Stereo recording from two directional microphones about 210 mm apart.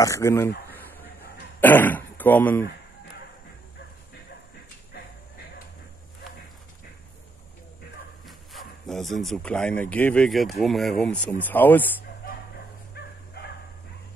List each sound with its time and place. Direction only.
0.0 s speech: 15° left (ahead or behind)
1.6 s speech: 10° left (ahead or behind)
8.3 s speech: centre (ahead or behind)
12.9 s dog: 50° left (ahead or behind)